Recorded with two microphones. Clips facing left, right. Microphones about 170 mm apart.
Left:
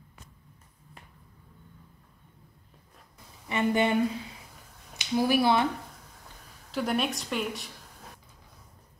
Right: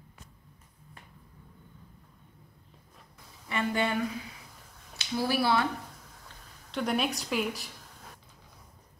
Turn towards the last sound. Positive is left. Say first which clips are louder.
# right 1 dB
turn(degrees=0)  # may be behind; listen again after turning